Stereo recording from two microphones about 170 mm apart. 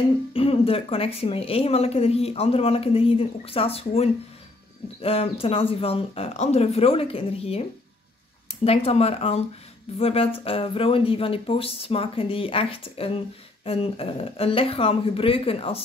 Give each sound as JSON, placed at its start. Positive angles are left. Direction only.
{"t": 0.3, "sound": "speech", "side_deg": 35}